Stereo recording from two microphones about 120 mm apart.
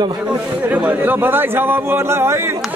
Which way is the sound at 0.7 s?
15° right (ahead or behind).